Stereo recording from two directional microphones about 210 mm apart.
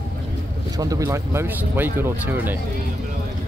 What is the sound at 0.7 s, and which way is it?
Speech, 15° right (ahead or behind).